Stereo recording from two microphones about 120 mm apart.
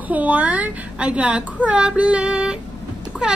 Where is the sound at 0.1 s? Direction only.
15° right (ahead or behind).